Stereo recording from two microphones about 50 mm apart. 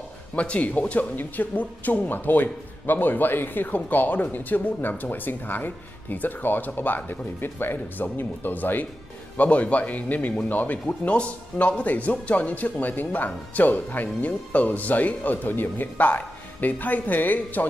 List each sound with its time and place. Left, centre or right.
0.4 s speech: left
9.4 s speech: left